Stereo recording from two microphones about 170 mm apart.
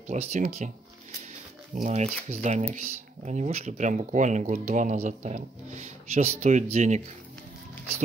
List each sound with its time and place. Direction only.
0.1 s speech: 40° right (ahead or behind)
1.8 s speech: 40° right (ahead or behind)